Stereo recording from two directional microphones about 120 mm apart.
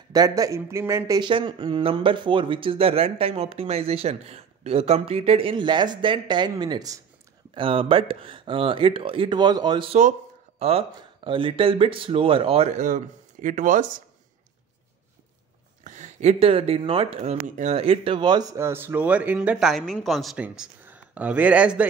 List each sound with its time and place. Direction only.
0.1 s speech: 30° right (ahead or behind)
1.2 s speech: 40° right (ahead or behind)
7.5 s speech: 45° right (ahead or behind)
10.6 s speech: 55° right (ahead or behind)
11.0 s speech: 45° right (ahead or behind); by 13.9 s 90° right
15.8 s speech: 85° right; by 17.8 s 70° right (ahead or behind)
17.8 s speech: 45° right (ahead or behind); by 21.8 s 10° right (ahead or behind)